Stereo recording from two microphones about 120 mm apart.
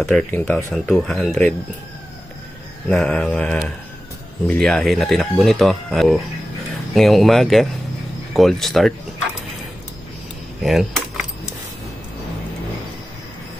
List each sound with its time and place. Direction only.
0.3 s speech: 15° left (ahead or behind)
0.7 s speech: 5° left (ahead or behind)
2.9 s speech: 5° left (ahead or behind)
10.6 s a sound: centre (ahead or behind)